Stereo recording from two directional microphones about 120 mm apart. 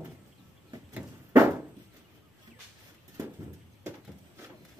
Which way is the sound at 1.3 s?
25° right (ahead or behind).